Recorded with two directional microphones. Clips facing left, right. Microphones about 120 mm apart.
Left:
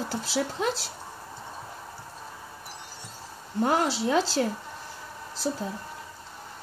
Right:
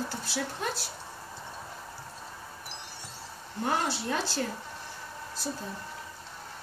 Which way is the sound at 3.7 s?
90° left.